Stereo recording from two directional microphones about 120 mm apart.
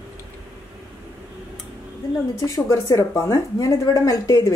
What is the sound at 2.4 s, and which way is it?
Speech, 25° left (ahead or behind).